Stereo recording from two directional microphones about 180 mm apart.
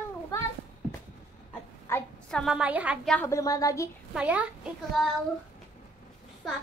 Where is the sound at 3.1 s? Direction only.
10° left (ahead or behind).